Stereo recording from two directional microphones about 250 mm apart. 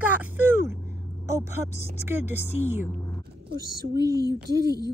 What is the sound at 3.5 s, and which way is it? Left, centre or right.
A woman's voice, right.